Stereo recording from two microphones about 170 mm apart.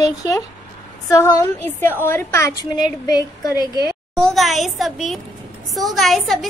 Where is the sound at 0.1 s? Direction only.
20° left (ahead or behind).